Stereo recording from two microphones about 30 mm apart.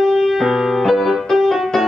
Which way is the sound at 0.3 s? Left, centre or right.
Centre.